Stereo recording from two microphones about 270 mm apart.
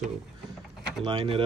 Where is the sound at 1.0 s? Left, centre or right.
Centre.